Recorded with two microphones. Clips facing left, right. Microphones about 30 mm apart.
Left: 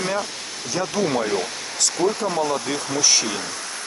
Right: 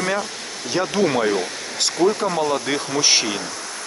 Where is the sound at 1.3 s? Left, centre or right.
Centre.